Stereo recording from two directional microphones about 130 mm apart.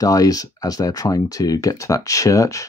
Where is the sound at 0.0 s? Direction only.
30° left (ahead or behind).